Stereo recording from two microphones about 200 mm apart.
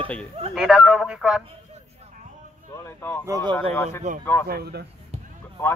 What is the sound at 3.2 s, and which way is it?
Speech, 15° right (ahead or behind).